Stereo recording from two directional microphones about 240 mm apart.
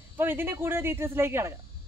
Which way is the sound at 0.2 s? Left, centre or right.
Centre.